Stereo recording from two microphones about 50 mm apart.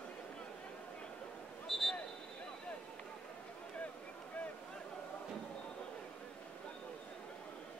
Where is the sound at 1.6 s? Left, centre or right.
Centre.